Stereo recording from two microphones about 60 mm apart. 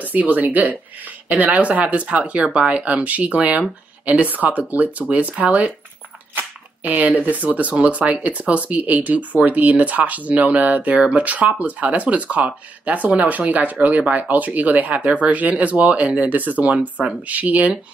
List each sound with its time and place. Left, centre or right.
0.0 s speech: right
6.3 s squish: right
7.2 s speech: right